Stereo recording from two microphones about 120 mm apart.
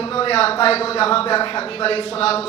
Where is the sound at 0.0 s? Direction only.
45° left (ahead or behind).